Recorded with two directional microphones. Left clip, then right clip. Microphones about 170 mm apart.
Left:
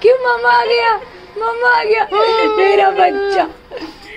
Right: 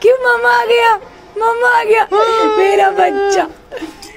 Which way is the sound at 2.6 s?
25° right (ahead or behind).